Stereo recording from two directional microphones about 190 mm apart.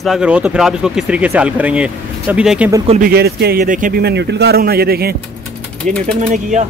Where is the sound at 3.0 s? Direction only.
55° right (ahead or behind).